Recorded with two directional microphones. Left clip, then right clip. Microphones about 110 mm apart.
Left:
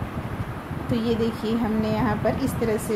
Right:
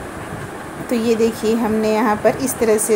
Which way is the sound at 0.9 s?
30° right (ahead or behind).